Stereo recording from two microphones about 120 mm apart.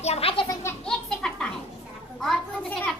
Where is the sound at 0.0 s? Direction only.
55° left (ahead or behind).